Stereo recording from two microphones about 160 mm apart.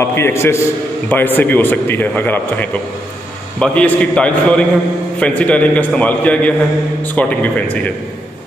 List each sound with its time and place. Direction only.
0.0 s a man's voice: 15° left (ahead or behind)